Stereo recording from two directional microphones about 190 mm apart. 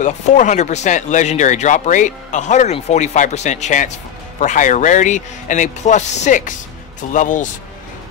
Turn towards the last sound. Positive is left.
turn(degrees=40)  # may be behind; listen again after turning